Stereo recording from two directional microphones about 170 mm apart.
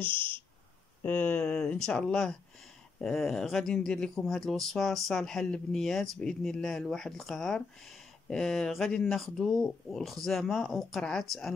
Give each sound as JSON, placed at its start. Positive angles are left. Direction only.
{"t": 0.0, "sound": "speech", "side_deg": -30}
{"t": 1.0, "sound": "speech", "side_deg": 10}